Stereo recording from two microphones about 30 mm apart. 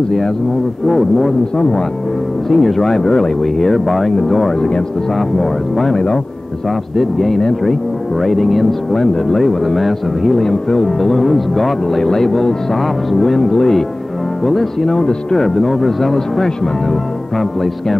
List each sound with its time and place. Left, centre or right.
0.8 s speech: centre
2.5 s speech: centre; by 3.3 s left
3.6 s speech: centre
4.6 s speech: left
5.1 s speech: centre
7.0 s speech: centre
9.0 s speech: centre
9.7 s speech: centre
10.3 s speech: centre
12.0 s speech: centre
12.7 s speech: centre
14.9 s speech: left
15.4 s speech: centre
17.4 s speech: centre